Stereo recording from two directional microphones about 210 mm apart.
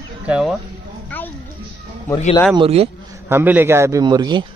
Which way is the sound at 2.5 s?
25° right (ahead or behind).